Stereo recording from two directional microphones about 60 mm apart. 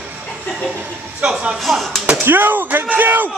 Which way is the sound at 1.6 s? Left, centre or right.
Centre.